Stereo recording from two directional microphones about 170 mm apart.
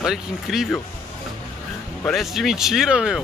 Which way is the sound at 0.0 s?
5° right (ahead or behind).